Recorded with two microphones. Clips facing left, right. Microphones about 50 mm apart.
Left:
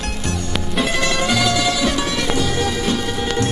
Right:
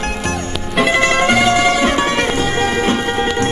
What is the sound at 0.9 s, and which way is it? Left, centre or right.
Music, right.